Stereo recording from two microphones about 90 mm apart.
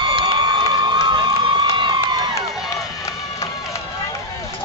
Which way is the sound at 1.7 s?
60° right (ahead or behind).